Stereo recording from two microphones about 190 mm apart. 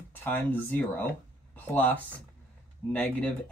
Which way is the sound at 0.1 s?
10° left (ahead or behind).